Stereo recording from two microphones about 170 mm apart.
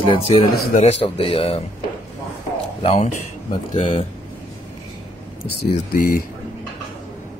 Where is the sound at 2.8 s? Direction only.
35° left (ahead or behind).